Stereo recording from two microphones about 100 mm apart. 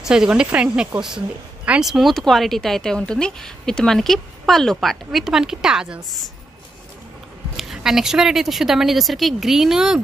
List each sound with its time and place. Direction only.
0.0 s speech: 5° right (ahead or behind)
7.5 s speech: 5° right (ahead or behind)